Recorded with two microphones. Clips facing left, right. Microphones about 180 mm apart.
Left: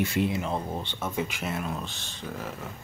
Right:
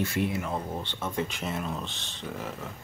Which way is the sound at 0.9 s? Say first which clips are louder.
Even; 5° left (ahead or behind).